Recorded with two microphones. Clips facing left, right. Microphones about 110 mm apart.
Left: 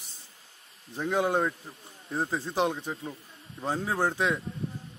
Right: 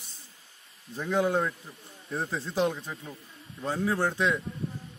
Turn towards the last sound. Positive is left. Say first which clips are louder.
# even
turn(degrees=20)  # may be behind; listen again after turning